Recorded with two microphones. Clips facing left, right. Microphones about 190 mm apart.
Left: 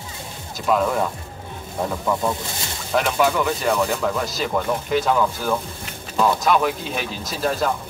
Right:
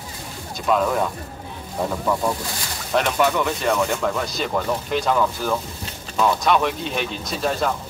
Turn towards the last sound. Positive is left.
turn(degrees=0)  # may be behind; listen again after turning